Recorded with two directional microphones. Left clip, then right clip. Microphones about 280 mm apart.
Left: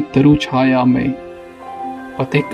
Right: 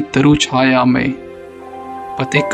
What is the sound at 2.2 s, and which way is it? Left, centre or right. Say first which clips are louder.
Speech: right 2 dB; right.